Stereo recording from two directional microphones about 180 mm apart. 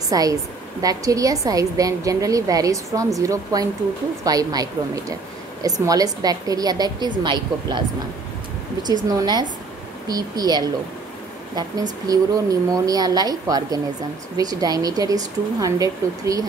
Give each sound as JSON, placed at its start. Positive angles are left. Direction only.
{"t": 0.1, "sound": "a woman's voice", "side_deg": -20}
{"t": 8.8, "sound": "a woman's voice", "side_deg": -20}
{"t": 12.1, "sound": "a woman's voice", "side_deg": -20}